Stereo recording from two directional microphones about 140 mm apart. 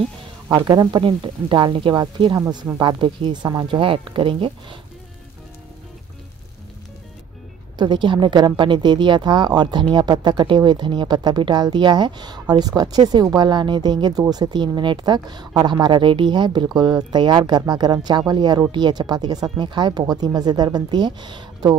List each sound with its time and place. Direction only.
0.5 s speech: 30° right (ahead or behind)
7.7 s speech: 30° right (ahead or behind)